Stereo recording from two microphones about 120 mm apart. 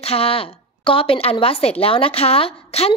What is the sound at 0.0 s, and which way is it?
A woman's voice, 55° left (ahead or behind).